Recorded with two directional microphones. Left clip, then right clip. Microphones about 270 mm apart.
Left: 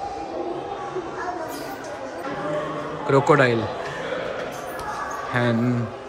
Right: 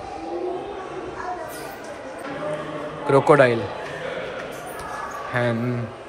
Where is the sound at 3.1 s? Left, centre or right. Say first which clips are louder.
Right 2 dB; centre.